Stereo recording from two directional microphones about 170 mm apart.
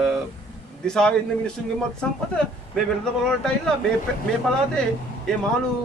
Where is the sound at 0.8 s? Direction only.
5° left (ahead or behind).